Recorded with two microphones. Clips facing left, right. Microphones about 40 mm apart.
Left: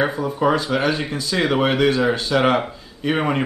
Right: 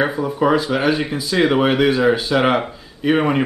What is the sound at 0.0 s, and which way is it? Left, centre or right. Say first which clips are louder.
Speech: right 2 dB; centre.